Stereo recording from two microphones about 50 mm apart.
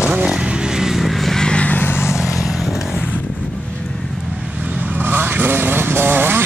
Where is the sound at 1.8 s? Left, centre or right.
Left.